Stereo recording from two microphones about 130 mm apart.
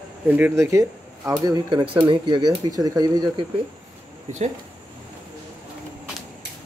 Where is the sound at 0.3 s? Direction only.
15° right (ahead or behind).